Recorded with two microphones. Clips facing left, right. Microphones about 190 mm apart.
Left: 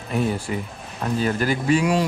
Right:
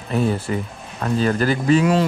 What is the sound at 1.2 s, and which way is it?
Speech, 5° left (ahead or behind).